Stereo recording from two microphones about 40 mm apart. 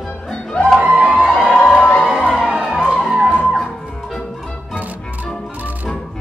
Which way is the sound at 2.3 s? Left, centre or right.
Centre.